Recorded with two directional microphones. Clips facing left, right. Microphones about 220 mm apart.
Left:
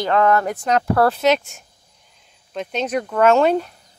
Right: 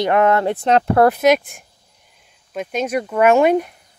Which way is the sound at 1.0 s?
10° right (ahead or behind).